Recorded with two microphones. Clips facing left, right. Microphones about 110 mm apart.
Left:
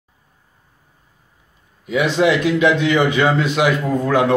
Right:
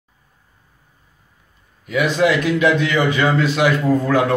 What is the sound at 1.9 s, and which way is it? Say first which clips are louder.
A man's voice: left 1 dB; 25° left (ahead or behind).